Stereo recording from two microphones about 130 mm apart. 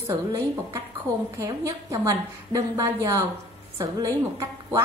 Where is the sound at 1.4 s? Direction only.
25° right (ahead or behind).